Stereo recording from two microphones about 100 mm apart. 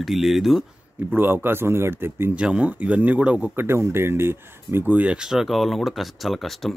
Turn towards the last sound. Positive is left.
turn(degrees=0)  # may be behind; listen again after turning